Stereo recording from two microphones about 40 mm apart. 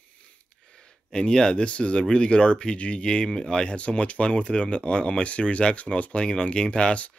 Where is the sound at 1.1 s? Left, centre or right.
Centre.